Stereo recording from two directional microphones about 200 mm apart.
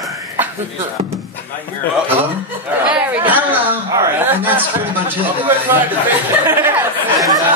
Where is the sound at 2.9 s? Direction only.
5° right (ahead or behind).